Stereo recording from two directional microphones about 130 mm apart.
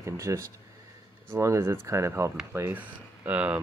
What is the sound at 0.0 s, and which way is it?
Speech, 20° right (ahead or behind).